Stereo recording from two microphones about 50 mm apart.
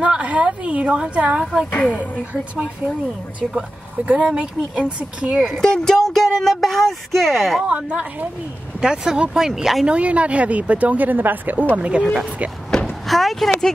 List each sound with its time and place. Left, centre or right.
0.0 s speech: right
1.7 s speech: left
4.0 s speech: right
5.5 s speech: centre
7.6 s speech: right
8.8 s speech: centre
9.8 s speech: right
11.7 s speech: right
13.0 s a sound: centre